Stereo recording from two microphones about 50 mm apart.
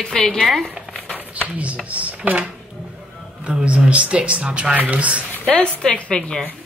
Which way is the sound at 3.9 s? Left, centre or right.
Right.